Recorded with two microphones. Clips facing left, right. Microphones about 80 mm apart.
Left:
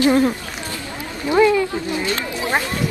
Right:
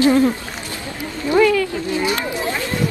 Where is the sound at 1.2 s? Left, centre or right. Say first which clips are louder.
Even; left.